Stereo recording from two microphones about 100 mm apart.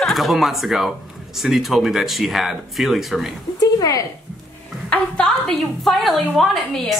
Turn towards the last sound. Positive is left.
turn(degrees=0)  # may be behind; listen again after turning